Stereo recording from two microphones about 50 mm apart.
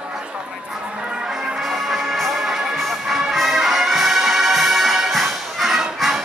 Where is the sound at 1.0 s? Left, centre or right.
Centre.